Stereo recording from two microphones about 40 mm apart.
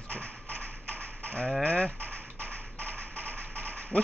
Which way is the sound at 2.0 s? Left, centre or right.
Right.